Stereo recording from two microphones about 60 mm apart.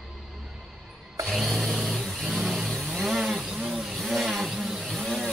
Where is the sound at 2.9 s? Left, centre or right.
Centre.